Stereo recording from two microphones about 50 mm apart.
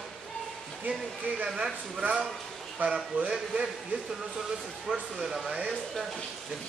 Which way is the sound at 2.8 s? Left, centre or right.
Right.